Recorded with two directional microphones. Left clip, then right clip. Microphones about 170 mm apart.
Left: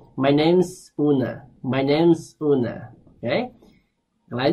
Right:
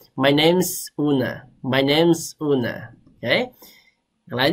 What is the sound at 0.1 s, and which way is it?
Speech, 15° right (ahead or behind).